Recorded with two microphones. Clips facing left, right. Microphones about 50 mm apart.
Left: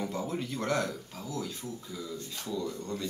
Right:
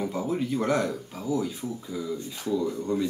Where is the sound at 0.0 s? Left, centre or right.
Centre.